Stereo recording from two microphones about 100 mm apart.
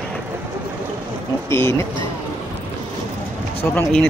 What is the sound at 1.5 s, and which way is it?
Speech, 25° left (ahead or behind).